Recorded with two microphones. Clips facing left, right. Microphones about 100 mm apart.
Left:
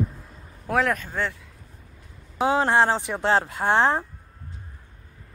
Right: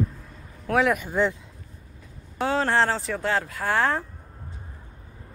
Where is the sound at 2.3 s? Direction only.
15° left (ahead or behind).